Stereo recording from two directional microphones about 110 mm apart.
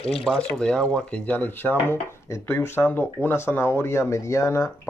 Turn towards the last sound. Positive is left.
turn(degrees=25)  # may be behind; listen again after turning